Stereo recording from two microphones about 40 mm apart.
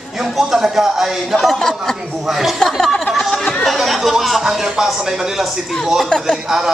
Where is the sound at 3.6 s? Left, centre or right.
Centre.